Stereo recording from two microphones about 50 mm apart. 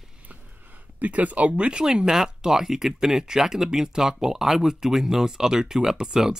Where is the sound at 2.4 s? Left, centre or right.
Centre.